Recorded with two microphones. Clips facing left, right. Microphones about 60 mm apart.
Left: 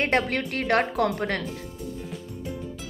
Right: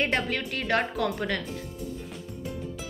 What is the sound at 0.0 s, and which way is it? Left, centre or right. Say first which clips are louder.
A woman's voice: left 3 dB; left.